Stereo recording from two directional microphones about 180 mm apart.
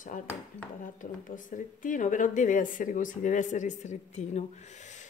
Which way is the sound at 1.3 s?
45° left (ahead or behind).